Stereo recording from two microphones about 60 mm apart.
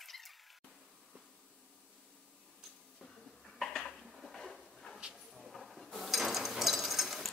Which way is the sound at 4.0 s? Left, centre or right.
Centre.